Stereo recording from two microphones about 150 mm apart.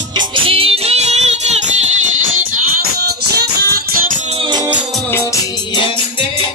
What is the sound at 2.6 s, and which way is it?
Music, 90° right.